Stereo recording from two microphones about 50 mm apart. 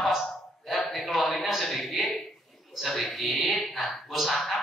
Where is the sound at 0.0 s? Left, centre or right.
Centre.